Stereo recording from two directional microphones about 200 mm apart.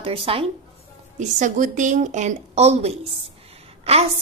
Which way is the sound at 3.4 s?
30° right (ahead or behind).